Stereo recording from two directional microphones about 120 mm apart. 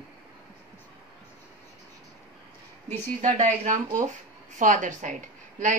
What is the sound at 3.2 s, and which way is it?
A woman's voice, 90° right.